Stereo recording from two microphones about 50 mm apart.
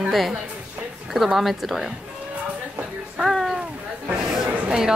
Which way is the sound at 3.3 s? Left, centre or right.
Centre.